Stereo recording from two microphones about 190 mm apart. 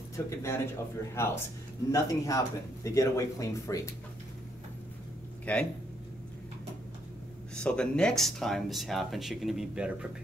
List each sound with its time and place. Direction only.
0.3 s speech: 15° left (ahead or behind)
5.4 s speech: 5° left (ahead or behind)
7.5 s speech: 5° left (ahead or behind)